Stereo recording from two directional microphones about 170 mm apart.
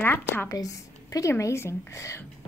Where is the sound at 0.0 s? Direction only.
10° left (ahead or behind).